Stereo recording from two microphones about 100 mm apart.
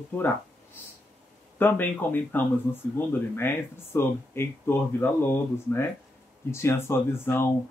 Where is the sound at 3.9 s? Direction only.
25° left (ahead or behind).